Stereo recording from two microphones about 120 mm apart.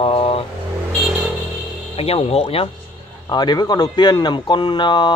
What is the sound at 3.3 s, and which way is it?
Speech, 35° left (ahead or behind).